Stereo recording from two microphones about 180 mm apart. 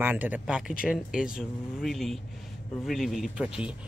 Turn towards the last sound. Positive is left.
turn(degrees=-5)  # may be behind; listen again after turning